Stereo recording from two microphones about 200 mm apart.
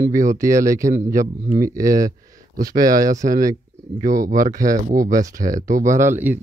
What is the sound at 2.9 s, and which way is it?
Speech, 15° right (ahead or behind).